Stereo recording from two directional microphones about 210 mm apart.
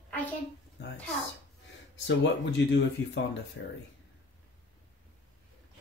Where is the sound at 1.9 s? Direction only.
55° left (ahead or behind).